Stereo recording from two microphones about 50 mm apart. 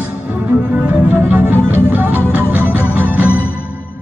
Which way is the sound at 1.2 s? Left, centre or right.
Right.